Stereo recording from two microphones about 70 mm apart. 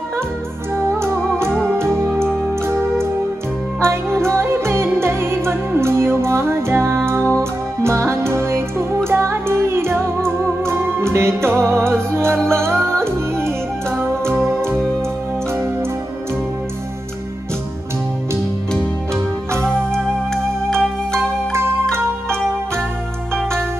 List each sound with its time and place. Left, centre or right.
0.9 s music: right